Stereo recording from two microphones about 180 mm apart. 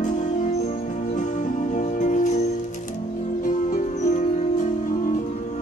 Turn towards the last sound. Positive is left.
turn(degrees=45)  # may be behind; listen again after turning